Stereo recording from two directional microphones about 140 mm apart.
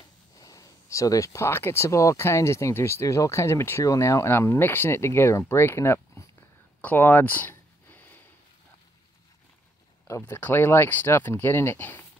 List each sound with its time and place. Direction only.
0.4 s speech: 25° left (ahead or behind)
6.8 s a sound: 10° left (ahead or behind)
10.0 s speech: 20° left (ahead or behind)